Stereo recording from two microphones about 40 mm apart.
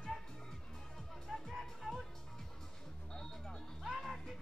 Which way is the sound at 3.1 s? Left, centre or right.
Centre.